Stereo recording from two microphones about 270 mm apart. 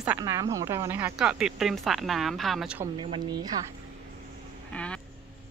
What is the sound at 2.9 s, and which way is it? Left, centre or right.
Speech, centre.